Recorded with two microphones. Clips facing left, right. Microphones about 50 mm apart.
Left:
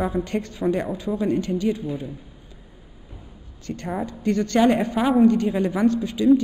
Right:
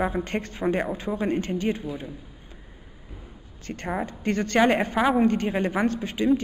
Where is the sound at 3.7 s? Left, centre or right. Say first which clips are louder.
Left 1 dB; right.